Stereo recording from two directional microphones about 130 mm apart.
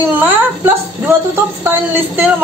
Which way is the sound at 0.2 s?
15° right (ahead or behind).